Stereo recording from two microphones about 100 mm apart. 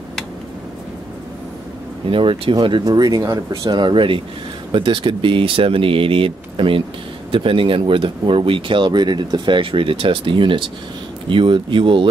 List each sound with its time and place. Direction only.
2.0 s speech: 60° right (ahead or behind)
2.8 s speech: 40° right (ahead or behind); by 12.1 s 55° right (ahead or behind)